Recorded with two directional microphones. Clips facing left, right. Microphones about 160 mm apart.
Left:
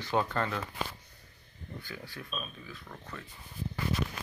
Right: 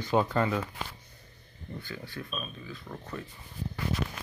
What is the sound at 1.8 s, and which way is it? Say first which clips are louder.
Speech: right 4 dB; 10° left (ahead or behind).